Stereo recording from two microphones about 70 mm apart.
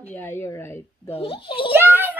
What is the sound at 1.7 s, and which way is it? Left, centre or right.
Speech, right.